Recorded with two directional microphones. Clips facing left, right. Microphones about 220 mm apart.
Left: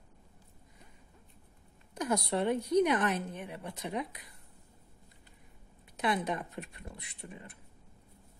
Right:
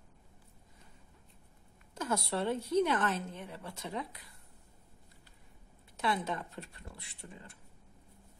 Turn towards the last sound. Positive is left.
turn(degrees=20)  # may be behind; listen again after turning